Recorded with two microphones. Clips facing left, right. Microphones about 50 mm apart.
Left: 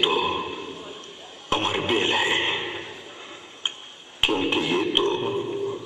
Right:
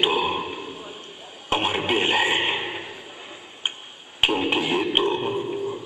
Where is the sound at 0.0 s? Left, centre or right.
Centre.